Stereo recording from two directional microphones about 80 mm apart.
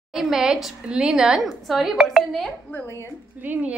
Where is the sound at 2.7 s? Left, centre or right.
Left.